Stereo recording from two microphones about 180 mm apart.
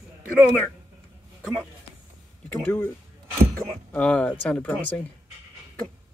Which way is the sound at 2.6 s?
15° left (ahead or behind).